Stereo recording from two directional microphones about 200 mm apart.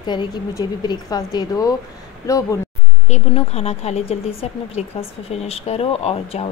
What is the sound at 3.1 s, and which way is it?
A woman's voice, 30° left (ahead or behind).